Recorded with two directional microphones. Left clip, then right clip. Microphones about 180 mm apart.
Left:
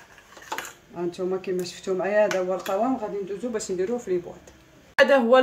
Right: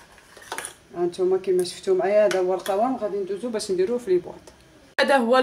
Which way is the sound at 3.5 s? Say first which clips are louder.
Right 3 dB; 45° right (ahead or behind).